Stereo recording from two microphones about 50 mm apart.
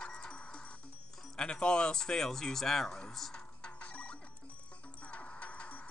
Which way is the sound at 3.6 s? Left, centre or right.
Left.